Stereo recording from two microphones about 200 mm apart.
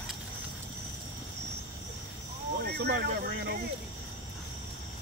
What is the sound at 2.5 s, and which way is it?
Speech, 55° right (ahead or behind).